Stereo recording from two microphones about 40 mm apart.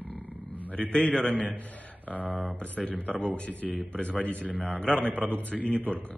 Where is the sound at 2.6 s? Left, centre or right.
Left.